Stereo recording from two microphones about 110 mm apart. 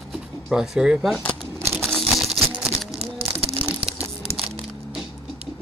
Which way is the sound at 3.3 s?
60° right (ahead or behind).